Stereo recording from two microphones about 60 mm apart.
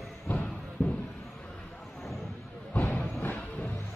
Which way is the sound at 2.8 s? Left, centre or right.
Left.